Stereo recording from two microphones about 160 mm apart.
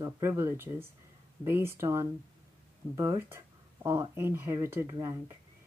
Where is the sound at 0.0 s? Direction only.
15° right (ahead or behind).